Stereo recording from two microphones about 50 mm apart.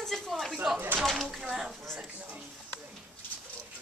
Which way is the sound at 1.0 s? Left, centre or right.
Centre.